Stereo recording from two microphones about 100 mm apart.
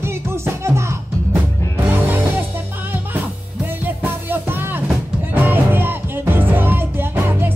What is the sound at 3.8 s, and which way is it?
Music, 20° right (ahead or behind).